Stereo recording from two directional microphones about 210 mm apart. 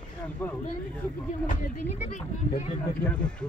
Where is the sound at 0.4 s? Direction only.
10° left (ahead or behind).